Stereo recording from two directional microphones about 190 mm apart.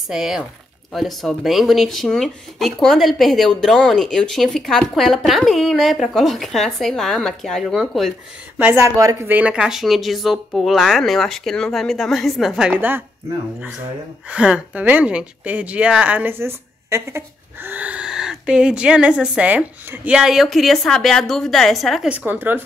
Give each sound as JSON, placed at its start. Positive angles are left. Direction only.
{"t": 0.1, "sound": "a woman's voice", "side_deg": 0}
{"t": 8.5, "sound": "a woman's voice", "side_deg": -10}